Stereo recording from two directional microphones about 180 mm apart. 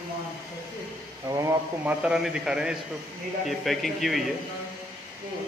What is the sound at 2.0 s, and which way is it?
A man's voice, 5° right (ahead or behind).